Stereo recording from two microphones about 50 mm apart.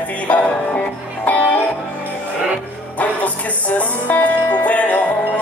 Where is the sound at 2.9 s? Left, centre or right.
Left.